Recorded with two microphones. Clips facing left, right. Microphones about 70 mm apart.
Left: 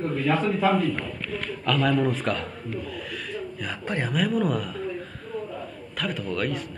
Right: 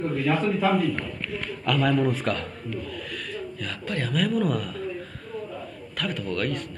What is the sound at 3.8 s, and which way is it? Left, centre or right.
Speech, left.